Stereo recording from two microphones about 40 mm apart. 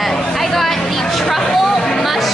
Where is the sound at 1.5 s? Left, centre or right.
Centre.